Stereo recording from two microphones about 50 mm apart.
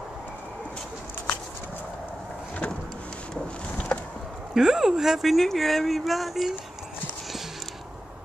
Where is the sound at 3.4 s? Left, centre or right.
Centre.